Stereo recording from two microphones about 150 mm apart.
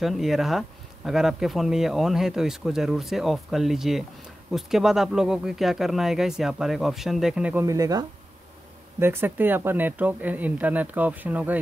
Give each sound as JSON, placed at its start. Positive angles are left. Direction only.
{"t": 0.0, "sound": "speech", "side_deg": 0}
{"t": 7.6, "sound": "speech", "side_deg": -20}